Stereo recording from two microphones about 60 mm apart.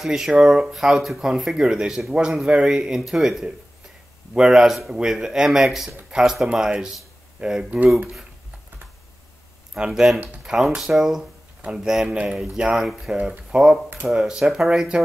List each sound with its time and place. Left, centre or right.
0.0 s speech: centre
9.8 s speech: centre